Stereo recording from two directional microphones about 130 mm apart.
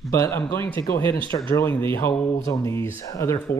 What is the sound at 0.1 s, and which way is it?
Speech, 20° left (ahead or behind).